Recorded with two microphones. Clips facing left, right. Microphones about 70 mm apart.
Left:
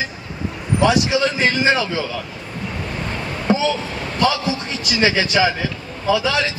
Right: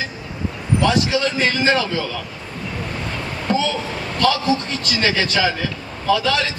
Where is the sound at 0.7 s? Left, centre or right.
Centre.